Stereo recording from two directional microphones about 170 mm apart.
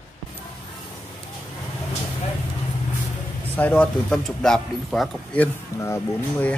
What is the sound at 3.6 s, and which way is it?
Speech, 10° left (ahead or behind).